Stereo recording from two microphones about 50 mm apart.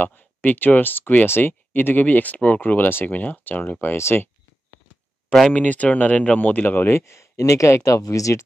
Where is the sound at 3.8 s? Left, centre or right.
Left.